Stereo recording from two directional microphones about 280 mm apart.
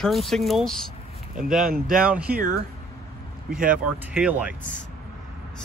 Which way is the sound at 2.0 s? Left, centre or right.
Centre.